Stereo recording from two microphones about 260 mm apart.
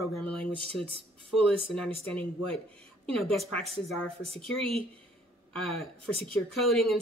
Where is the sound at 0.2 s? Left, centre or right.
Centre.